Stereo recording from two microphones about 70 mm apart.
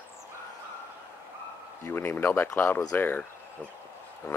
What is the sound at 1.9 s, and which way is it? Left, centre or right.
Speech, left.